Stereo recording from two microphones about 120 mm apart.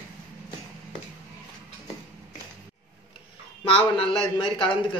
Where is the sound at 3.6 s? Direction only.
50° left (ahead or behind).